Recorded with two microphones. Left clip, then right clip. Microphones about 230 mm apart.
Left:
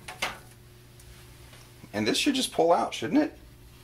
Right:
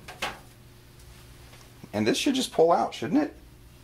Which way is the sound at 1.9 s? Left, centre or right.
Right.